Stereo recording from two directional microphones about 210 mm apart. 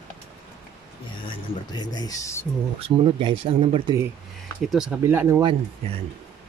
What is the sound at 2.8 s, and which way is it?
Speech, 25° right (ahead or behind).